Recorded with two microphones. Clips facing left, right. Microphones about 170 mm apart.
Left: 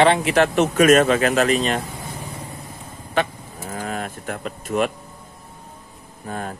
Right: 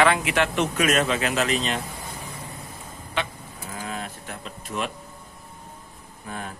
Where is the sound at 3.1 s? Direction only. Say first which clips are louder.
Left 7 dB; 45° left (ahead or behind).